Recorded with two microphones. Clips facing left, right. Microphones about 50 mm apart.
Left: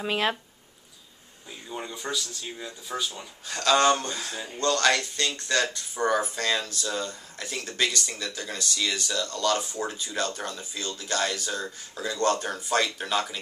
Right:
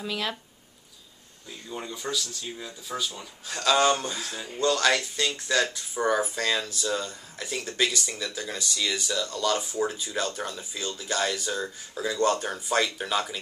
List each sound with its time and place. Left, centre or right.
0.0 s speech: left
1.7 s speech: centre